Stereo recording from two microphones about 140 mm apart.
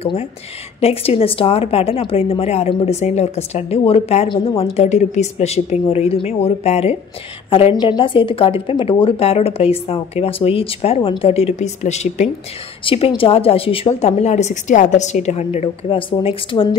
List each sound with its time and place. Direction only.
0.0 s a woman's voice: 45° left (ahead or behind)
12.8 s speech: 40° left (ahead or behind)